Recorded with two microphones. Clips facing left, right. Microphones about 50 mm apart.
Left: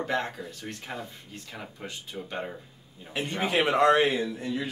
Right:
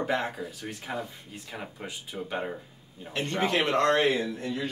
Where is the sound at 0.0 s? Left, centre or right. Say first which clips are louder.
Right 1 dB; centre.